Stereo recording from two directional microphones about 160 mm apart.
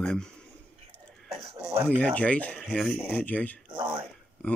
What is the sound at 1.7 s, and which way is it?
Speech, 15° right (ahead or behind).